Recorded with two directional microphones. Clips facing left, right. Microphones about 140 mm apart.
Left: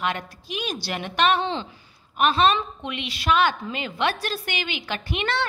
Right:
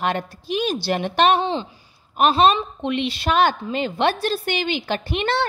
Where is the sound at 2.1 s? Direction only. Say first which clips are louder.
Right 4 dB; 35° right (ahead or behind).